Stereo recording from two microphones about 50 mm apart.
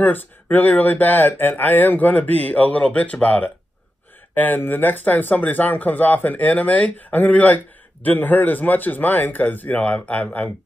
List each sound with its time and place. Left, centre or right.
0.0 s speech: left